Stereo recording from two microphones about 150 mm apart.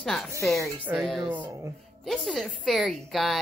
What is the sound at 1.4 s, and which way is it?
Speech, 20° right (ahead or behind).